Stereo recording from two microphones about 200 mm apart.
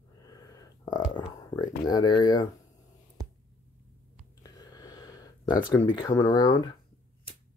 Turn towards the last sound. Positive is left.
turn(degrees=20)  # may be behind; listen again after turning